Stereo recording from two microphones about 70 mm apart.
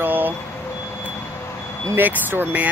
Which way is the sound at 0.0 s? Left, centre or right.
Right.